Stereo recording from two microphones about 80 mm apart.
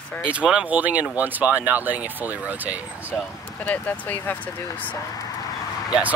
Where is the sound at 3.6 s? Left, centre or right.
Centre.